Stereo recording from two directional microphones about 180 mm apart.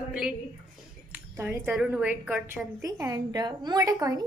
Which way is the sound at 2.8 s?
20° right (ahead or behind).